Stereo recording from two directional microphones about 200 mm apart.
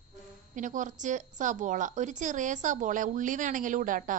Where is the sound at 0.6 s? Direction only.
40° right (ahead or behind).